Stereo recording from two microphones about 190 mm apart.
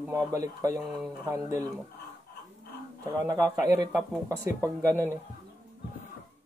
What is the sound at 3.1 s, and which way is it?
A man's voice, 20° right (ahead or behind).